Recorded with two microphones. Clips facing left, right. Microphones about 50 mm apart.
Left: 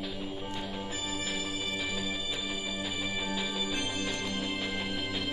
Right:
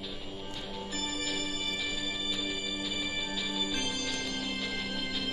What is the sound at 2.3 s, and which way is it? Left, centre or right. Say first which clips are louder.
Music: even; left.